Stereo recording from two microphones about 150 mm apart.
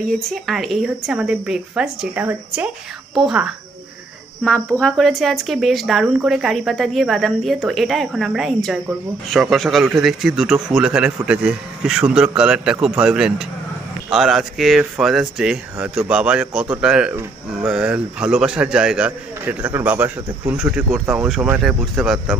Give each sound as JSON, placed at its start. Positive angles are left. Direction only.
{"t": 0.3, "sound": "a woman's voice", "side_deg": 0}
{"t": 4.5, "sound": "speech", "side_deg": 5}